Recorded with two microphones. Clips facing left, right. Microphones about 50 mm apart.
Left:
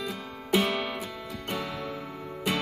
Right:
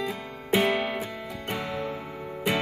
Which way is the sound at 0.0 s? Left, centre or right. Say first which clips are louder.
Right 3 dB; centre.